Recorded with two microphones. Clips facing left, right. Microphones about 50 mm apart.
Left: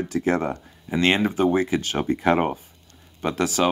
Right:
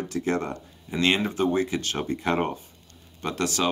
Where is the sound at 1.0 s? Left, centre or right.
Left.